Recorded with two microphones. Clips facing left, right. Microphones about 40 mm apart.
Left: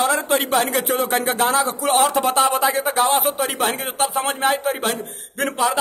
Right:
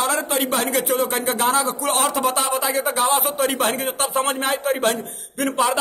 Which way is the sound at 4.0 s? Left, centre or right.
Centre.